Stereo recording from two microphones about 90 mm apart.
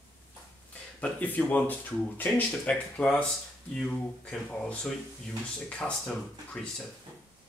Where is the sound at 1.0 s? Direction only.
15° left (ahead or behind).